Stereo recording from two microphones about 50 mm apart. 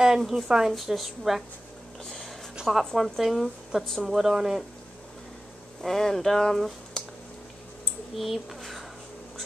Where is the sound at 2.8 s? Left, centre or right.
Centre.